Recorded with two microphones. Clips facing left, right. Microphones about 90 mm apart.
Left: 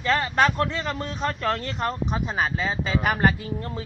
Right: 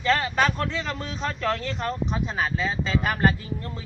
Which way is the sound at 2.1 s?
10° left (ahead or behind).